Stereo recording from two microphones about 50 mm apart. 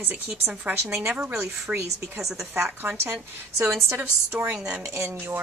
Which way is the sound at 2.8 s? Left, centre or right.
Right.